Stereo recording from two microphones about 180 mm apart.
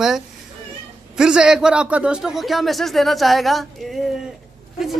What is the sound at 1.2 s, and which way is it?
Speech, 5° right (ahead or behind).